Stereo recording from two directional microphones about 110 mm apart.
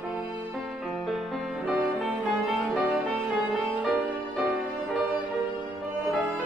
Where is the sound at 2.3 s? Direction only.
5° right (ahead or behind).